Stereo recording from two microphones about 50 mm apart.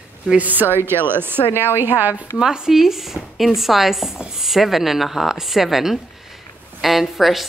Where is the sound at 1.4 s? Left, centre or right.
Left.